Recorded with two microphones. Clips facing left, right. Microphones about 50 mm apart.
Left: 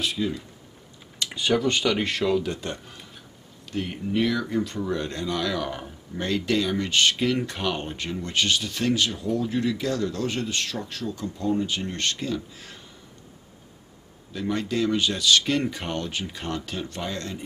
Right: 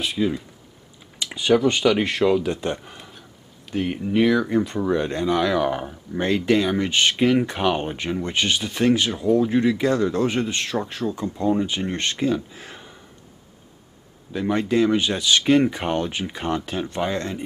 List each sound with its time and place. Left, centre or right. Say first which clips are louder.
0.0 s speech: right 4 dB; centre
14.3 s speech: right 6 dB; right